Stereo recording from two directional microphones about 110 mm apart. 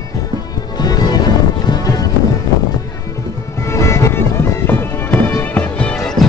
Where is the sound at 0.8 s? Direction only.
35° left (ahead or behind).